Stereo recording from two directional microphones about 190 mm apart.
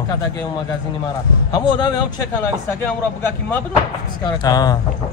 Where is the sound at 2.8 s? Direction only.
10° left (ahead or behind).